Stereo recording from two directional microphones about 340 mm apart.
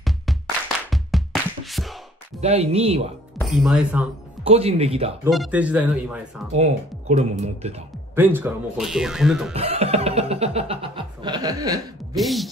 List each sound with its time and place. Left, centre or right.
0.8 s music: centre
2.4 s music: centre
3.3 s speech: centre
4.5 s music: centre
5.2 s speech: centre
6.5 s speech: centre
8.2 s speech: centre
9.5 s music: centre
12.2 s speech: centre